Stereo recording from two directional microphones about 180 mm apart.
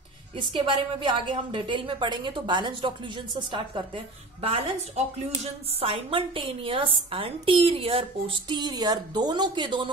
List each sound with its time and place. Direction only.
0.4 s a woman's voice: 25° right (ahead or behind)